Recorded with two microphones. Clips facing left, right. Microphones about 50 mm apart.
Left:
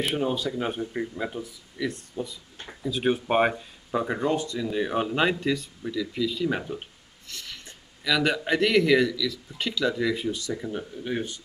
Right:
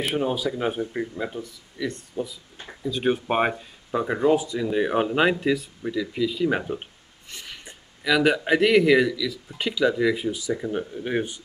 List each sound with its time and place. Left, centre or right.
0.0 s speech: centre